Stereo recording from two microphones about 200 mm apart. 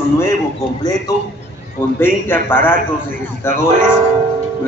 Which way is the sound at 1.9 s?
10° left (ahead or behind).